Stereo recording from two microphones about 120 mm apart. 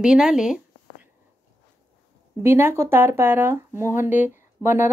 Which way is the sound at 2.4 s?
20° right (ahead or behind).